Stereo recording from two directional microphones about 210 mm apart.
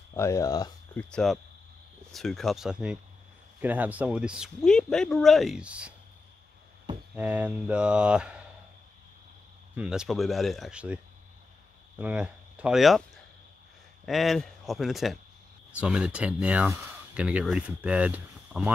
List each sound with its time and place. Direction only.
0.1 s speech: 15° left (ahead or behind)
1.1 s speech: centre (ahead or behind)
7.2 s speech: 5° right (ahead or behind)
9.8 s speech: 5° right (ahead or behind)
12.0 s speech: 5° right (ahead or behind)